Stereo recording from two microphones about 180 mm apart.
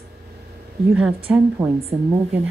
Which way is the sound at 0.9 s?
5° right (ahead or behind).